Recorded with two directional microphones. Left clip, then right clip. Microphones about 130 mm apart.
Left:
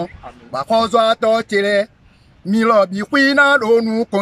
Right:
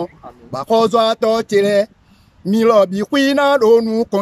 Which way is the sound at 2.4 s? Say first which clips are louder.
Right 2 dB; 55° right (ahead or behind).